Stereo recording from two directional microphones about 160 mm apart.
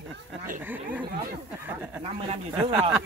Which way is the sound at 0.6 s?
10° right (ahead or behind).